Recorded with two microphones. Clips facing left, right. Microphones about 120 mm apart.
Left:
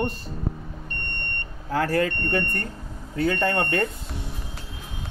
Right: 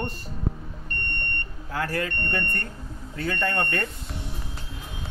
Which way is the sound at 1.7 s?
30° left (ahead or behind).